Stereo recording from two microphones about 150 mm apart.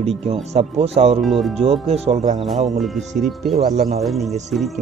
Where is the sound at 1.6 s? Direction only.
40° right (ahead or behind).